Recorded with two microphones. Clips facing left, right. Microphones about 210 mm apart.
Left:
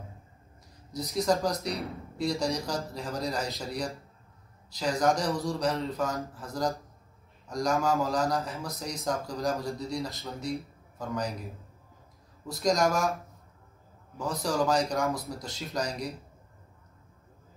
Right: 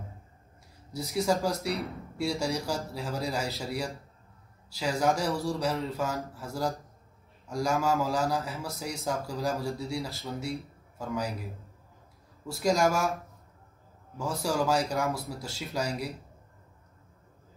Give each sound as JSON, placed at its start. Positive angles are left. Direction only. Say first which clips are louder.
{"t": 1.1, "sound": "a man's voice", "louder": "even", "side_deg": -5}
{"t": 14.1, "sound": "a man's voice", "louder": "even", "side_deg": -10}